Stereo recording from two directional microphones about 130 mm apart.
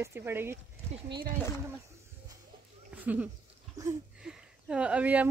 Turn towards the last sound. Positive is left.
turn(degrees=-10)  # may be behind; listen again after turning